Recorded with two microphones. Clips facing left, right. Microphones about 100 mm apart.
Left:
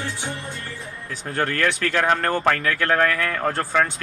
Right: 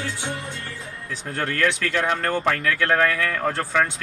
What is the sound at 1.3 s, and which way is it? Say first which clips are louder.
Speech: left 1 dB; 40° left (ahead or behind).